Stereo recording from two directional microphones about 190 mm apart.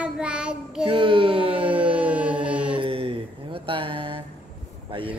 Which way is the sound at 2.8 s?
30° right (ahead or behind).